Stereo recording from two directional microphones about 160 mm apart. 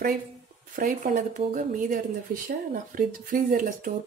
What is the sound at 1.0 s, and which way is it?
Speech, 55° right (ahead or behind).